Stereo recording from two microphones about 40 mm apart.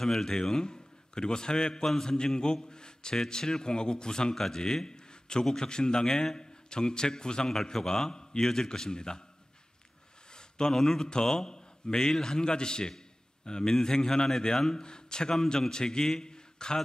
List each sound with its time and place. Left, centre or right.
0.0 s a man's voice: centre
10.3 s a man's voice: centre